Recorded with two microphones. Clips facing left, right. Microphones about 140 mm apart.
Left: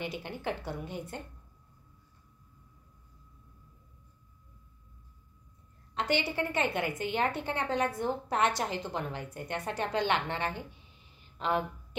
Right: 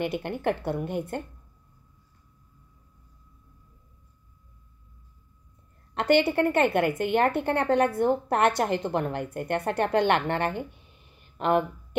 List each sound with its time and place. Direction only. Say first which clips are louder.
0.0 s a woman's voice: right 9 dB; 60° right (ahead or behind)
5.9 s a woman's voice: right 9 dB; 60° right (ahead or behind)